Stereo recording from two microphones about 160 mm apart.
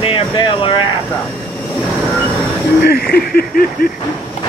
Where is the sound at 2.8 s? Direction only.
80° left.